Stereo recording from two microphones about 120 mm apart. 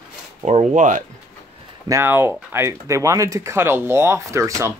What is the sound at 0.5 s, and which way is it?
Speech, 80° right.